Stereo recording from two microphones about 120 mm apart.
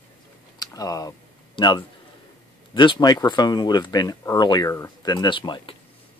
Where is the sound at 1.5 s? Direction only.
40° left (ahead or behind).